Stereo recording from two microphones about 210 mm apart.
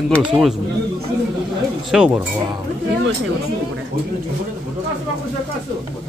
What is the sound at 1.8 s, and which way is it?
Speech, 5° right (ahead or behind).